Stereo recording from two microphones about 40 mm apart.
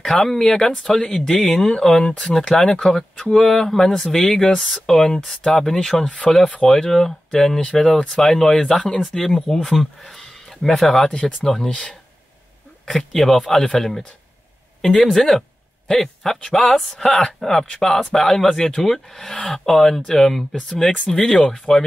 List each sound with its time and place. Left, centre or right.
0.0 s speech: centre
3.0 s speech: centre
6.6 s speech: centre
11.1 s speech: left
11.4 s speech: centre